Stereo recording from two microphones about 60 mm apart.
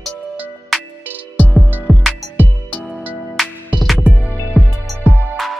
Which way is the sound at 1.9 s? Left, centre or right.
Right.